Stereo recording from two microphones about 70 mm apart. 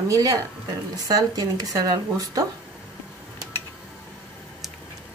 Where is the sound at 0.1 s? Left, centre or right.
Right.